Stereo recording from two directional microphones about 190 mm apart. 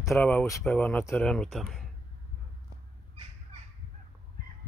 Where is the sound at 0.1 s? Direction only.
10° left (ahead or behind).